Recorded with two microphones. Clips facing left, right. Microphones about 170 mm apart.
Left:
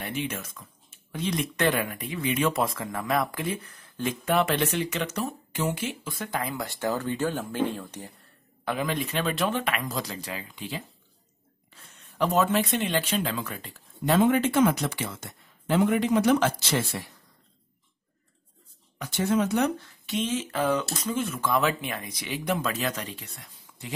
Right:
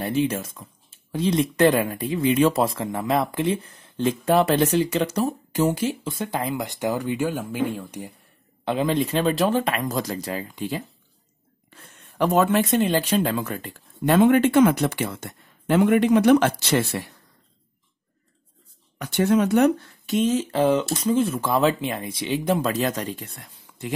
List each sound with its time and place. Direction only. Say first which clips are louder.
0.0 s speech: right 9 dB; 35° right (ahead or behind)
6.0 s speech: right 5 dB; 25° right (ahead or behind)
8.6 s speech: right 6 dB; 30° right (ahead or behind); by 17.1 s 65° right (ahead or behind)
18.9 s speech: right 5 dB; 65° right (ahead or behind); by 20.6 s 40° right (ahead or behind)
20.6 s speech: right 7 dB; 30° right (ahead or behind); by 23.9 s 50° right (ahead or behind)